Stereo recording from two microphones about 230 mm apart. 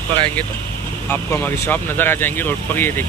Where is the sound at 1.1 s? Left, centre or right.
Centre.